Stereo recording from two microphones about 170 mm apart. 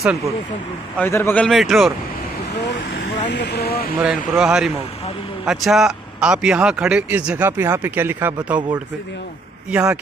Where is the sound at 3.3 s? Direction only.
85° left; by 3.9 s 65° left (ahead or behind).